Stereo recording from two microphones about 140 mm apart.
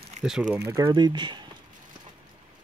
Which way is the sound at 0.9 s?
35° right (ahead or behind).